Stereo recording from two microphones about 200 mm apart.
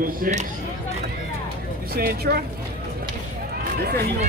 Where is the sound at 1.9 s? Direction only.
50° right (ahead or behind).